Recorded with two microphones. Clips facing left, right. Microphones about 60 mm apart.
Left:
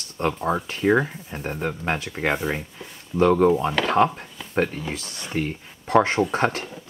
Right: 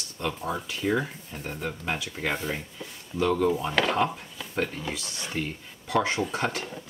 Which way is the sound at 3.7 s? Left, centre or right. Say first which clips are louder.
Left 2 dB; centre.